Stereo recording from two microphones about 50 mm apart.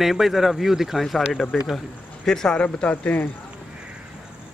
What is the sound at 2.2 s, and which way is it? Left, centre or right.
Speech, centre.